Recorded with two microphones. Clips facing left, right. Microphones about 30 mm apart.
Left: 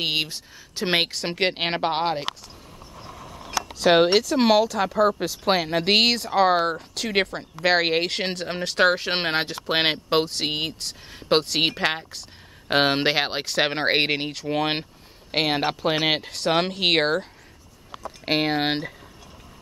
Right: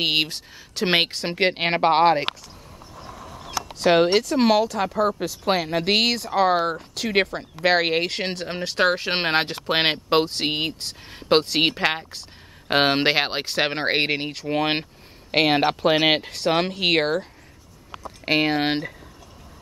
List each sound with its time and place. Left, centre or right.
0.0 s speech: right
0.8 s speech: centre
1.9 s speech: centre
3.9 s speech: centre
9.3 s speech: right
9.7 s speech: centre
13.6 s speech: centre
15.3 s speech: right
16.3 s speech: centre
18.2 s speech: centre